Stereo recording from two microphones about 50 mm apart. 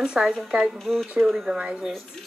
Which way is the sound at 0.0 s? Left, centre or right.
Centre.